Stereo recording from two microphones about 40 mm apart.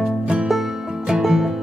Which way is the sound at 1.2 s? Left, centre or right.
Centre.